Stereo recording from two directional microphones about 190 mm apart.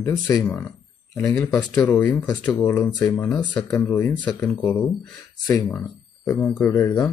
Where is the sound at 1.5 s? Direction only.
20° left (ahead or behind).